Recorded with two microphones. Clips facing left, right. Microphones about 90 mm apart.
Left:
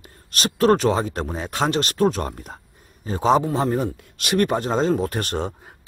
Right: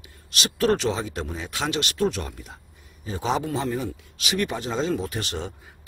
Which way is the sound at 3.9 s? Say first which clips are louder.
Left 6 dB; 55° left (ahead or behind).